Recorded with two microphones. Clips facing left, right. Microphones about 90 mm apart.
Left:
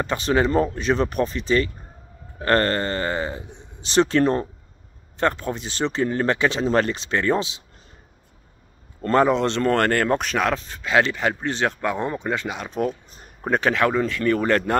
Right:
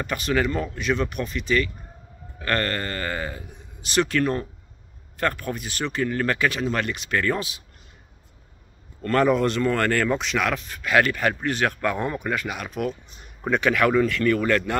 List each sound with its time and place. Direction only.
0.0 s speech: 30° left (ahead or behind)
9.0 s speech: 25° left (ahead or behind)
9.6 s speech: 55° left (ahead or behind)
10.3 s speech: 35° left (ahead or behind)